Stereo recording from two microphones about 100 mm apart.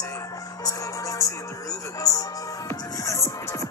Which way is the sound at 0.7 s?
35° left (ahead or behind).